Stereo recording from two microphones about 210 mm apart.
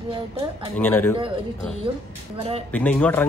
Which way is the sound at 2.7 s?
5° left (ahead or behind).